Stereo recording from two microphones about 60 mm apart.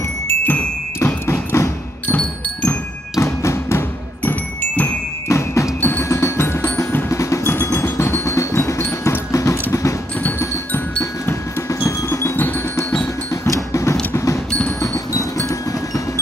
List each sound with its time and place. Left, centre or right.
0.3 s music: left
1.2 s a sound: left
3.2 s music: left
4.2 s music: left
5.3 s music: left
5.8 s music: left
6.0 s percussion: left
7.1 s music: left
7.4 s music: left
9.3 s a sound: left
10.7 s music: left
13.3 s music: left